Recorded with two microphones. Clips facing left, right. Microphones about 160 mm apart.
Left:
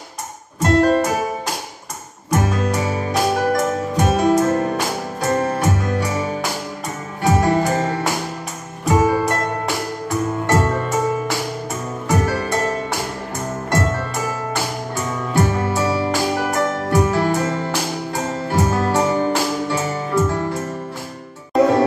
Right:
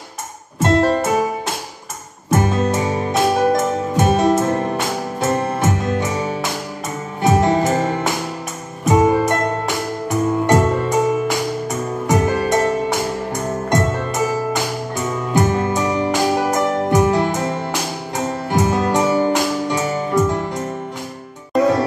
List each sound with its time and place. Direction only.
0.6 s music: 25° right (ahead or behind)
2.3 s music: 25° right (ahead or behind)
7.2 s music: 20° right (ahead or behind)
15.3 s music: 20° right (ahead or behind)